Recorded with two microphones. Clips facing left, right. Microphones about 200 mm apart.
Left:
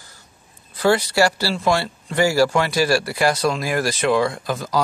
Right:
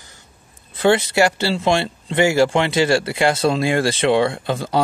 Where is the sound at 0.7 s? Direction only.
25° right (ahead or behind).